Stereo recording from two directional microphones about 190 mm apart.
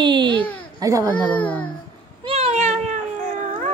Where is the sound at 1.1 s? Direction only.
5° left (ahead or behind).